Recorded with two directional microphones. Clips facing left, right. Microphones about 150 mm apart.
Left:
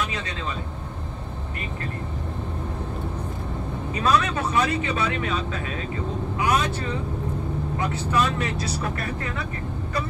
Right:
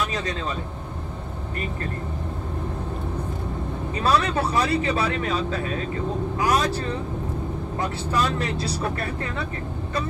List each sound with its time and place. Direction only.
4.0 s speech: 35° right (ahead or behind)
7.8 s speech: 35° right (ahead or behind)